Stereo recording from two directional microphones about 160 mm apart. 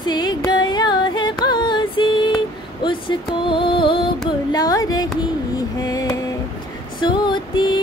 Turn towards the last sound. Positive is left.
turn(degrees=30)  # may be behind; listen again after turning